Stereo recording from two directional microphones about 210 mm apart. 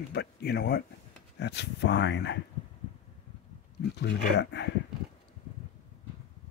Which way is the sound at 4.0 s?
55° left (ahead or behind).